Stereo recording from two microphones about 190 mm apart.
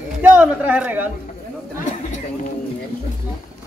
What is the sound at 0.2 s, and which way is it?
Speech, 10° right (ahead or behind).